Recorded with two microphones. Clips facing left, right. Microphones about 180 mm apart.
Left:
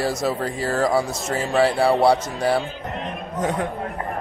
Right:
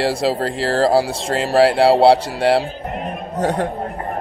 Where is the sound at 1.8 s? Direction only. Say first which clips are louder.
Right 6 dB; 30° right (ahead or behind).